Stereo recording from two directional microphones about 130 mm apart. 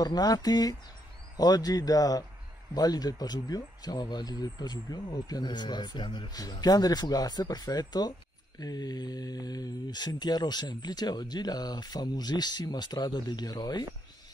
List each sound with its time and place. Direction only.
0.0 s speech: 30° left (ahead or behind)